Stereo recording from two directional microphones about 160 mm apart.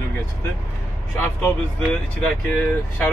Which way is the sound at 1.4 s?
5° left (ahead or behind).